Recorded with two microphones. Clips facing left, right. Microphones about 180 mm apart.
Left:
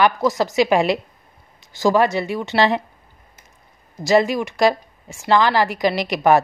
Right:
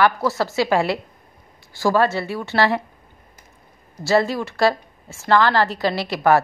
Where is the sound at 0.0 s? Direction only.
15° left (ahead or behind).